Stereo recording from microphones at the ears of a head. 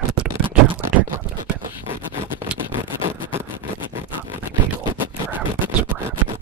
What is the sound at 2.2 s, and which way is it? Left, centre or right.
Vehicle, left.